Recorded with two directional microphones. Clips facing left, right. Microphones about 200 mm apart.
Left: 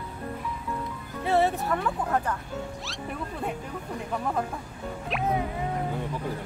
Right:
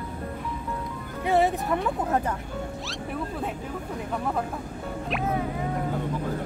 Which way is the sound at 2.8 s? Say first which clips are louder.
Right 3 dB; centre (ahead or behind).